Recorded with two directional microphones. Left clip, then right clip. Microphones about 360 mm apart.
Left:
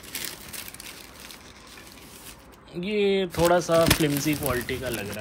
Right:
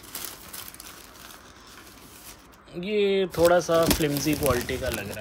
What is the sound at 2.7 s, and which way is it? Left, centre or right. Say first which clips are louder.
Speech: even; centre.